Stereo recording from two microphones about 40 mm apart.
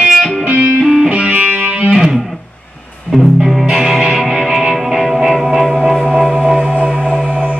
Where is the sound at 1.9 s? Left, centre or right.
Centre.